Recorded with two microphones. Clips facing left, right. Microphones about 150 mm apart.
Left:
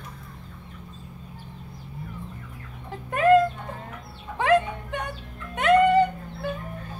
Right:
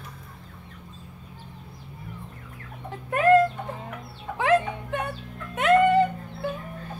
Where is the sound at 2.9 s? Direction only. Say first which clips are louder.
Even; centre (ahead or behind).